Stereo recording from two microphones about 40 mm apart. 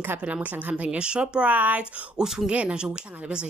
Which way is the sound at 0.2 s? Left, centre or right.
Right.